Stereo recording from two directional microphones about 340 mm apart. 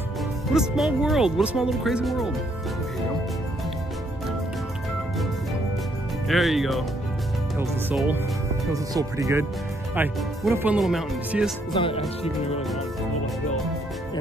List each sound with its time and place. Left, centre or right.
0.5 s speech: centre
6.2 s speech: centre
11.7 s speech: centre